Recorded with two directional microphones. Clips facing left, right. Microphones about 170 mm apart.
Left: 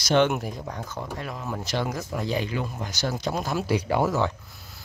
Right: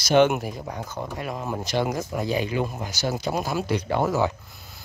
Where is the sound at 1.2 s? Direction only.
15° right (ahead or behind).